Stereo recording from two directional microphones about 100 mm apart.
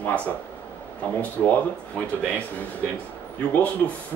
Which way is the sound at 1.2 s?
15° left (ahead or behind).